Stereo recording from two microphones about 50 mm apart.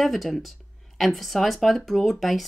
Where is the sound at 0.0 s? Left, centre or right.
Centre.